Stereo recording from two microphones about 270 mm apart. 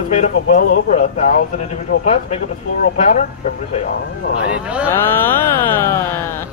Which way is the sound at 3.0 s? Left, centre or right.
Left.